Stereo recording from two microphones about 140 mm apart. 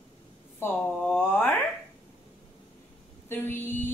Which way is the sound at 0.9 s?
10° left (ahead or behind).